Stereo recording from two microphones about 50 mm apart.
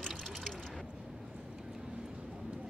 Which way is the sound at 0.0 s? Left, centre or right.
Centre.